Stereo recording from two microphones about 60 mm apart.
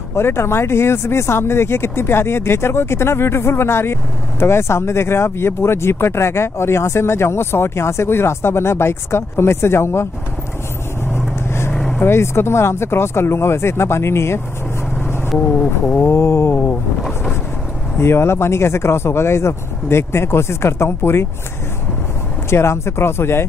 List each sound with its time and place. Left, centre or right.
0.1 s speech: left
11.1 s vehicle: left
11.7 s vehicle: centre
12.0 s speech: left
16.1 s speech: left
17.9 s speech: left
22.5 s speech: left